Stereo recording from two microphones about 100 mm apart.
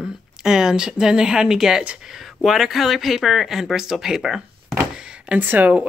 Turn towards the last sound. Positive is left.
turn(degrees=-15)  # may be behind; listen again after turning